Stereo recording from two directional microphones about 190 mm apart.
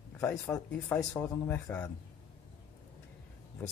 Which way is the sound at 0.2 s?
10° left (ahead or behind).